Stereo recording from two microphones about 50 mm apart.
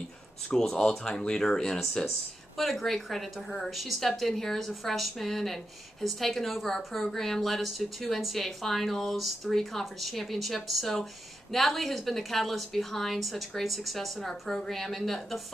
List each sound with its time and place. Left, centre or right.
0.5 s speech: centre
2.0 s a woman's voice: centre